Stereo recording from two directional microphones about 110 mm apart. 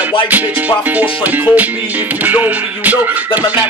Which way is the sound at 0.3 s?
15° right (ahead or behind).